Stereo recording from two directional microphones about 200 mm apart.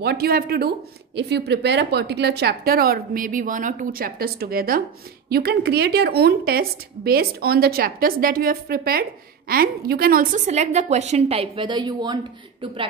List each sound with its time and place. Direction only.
0.0 s a woman's voice: 50° right (ahead or behind); by 12.2 s 20° right (ahead or behind)